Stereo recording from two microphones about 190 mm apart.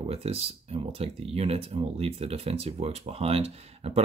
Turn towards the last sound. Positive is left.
turn(degrees=-35)  # may be behind; listen again after turning